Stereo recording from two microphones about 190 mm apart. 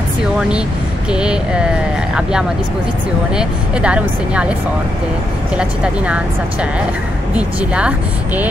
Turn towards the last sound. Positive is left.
turn(degrees=-5)  # may be behind; listen again after turning